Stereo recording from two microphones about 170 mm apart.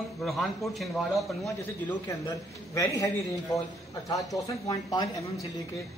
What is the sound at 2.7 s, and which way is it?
A man's voice, 20° left (ahead or behind).